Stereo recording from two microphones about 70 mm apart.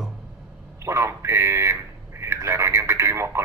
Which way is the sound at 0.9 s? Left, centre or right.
Right.